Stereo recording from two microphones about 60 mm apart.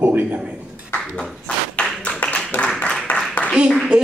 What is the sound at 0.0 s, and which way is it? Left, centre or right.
Speech, right.